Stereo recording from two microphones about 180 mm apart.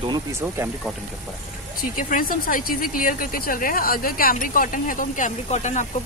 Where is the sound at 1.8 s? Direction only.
50° left (ahead or behind).